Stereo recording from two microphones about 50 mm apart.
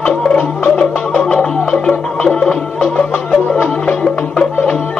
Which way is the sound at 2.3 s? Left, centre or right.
Centre.